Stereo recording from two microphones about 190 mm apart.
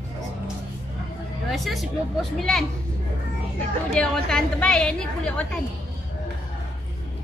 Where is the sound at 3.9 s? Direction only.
5° left (ahead or behind).